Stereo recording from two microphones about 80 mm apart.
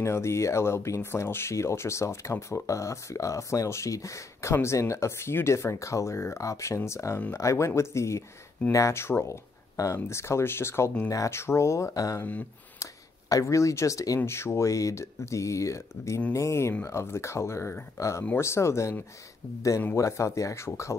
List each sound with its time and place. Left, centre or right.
0.0 s speech: left
11.1 s speech: left
11.3 s speech: left
12.2 s speech: left
13.3 s speech: left
20.0 s speech: left